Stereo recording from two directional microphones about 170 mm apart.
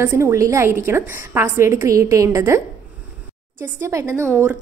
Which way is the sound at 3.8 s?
20° right (ahead or behind).